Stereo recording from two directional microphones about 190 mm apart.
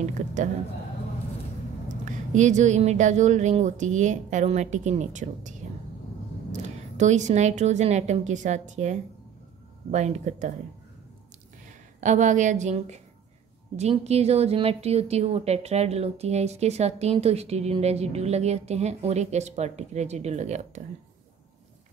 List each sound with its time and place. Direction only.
0.2 s a woman's voice: 40° right (ahead or behind)
1.9 s a woman's voice: 40° right (ahead or behind)
12.0 s a woman's voice: 40° right (ahead or behind)